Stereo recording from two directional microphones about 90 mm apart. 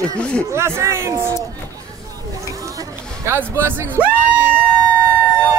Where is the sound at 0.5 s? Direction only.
30° right (ahead or behind).